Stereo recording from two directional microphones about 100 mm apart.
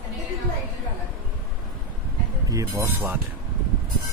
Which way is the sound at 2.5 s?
25° right (ahead or behind).